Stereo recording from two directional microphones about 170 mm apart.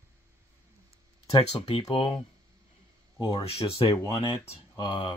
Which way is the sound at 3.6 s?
35° left (ahead or behind).